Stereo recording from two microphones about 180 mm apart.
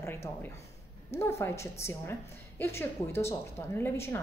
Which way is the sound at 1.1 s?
15° left (ahead or behind).